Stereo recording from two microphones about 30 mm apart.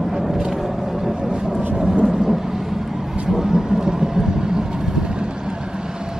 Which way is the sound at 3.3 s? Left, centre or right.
Centre.